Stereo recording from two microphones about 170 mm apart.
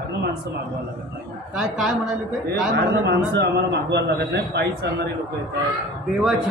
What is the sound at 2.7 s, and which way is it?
A man's voice, 80° right.